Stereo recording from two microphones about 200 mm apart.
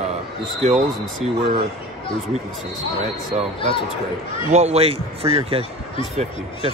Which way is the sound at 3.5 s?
25° left (ahead or behind).